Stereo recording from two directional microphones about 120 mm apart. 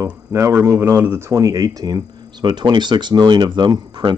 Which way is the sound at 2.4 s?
40° right (ahead or behind).